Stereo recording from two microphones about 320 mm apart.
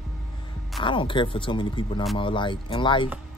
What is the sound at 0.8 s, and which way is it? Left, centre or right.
A man's voice, centre.